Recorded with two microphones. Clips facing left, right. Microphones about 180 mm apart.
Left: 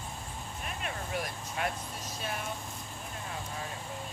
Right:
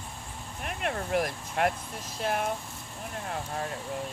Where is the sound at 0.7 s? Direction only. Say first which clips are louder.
Right 8 dB; 65° right (ahead or behind).